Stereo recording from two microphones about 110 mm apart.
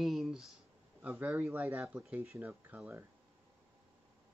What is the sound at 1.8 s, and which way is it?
Speech, 5° right (ahead or behind).